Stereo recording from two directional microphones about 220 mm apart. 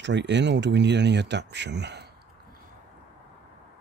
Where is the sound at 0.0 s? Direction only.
55° right (ahead or behind).